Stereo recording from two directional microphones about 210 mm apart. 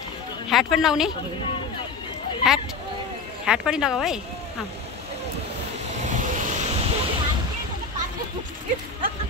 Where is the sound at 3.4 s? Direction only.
5° right (ahead or behind).